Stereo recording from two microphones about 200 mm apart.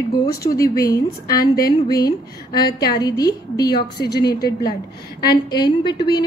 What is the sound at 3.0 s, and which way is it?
A woman's voice, 20° left (ahead or behind).